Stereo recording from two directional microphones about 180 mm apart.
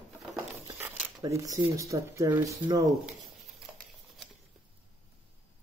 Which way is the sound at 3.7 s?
5° right (ahead or behind).